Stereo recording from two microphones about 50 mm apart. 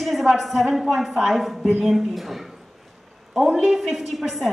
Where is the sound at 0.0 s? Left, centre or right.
Centre.